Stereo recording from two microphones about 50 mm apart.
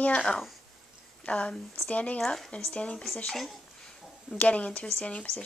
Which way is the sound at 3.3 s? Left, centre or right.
Centre.